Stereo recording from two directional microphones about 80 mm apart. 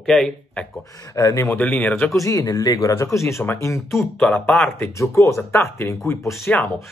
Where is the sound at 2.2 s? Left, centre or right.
Left.